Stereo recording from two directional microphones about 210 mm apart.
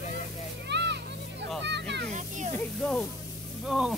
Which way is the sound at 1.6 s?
55° right (ahead or behind).